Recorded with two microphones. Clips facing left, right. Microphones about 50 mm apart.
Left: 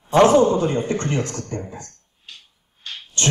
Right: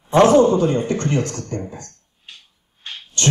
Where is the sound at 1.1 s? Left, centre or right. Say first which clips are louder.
Right 3 dB; left.